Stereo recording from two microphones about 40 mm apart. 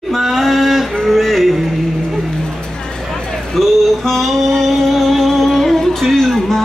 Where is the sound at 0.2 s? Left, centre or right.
Centre.